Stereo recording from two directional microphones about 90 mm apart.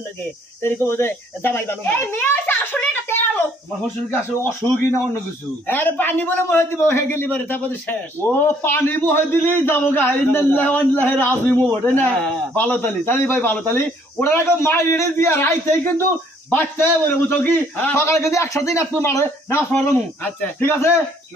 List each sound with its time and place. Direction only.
0.6 s a child's voice: 25° left (ahead or behind)